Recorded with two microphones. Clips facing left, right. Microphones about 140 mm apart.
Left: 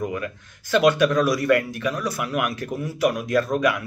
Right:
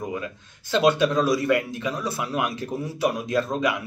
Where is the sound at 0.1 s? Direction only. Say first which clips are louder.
Left 2 dB; 25° right (ahead or behind).